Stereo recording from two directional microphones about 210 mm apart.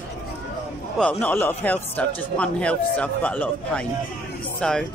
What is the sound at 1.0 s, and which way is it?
A man's voice, 5° left (ahead or behind).